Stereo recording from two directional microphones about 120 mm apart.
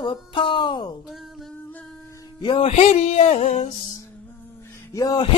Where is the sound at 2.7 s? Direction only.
70° left (ahead or behind).